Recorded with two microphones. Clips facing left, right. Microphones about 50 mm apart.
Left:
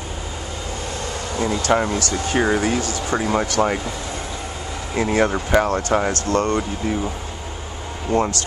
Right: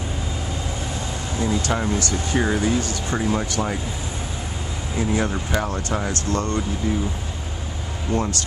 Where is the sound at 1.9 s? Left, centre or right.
Left.